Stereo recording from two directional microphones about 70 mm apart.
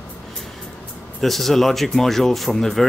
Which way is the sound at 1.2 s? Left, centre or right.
Centre.